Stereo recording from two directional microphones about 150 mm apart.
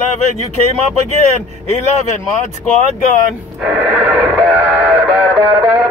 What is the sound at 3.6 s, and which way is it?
Synthetic singing, 5° right (ahead or behind).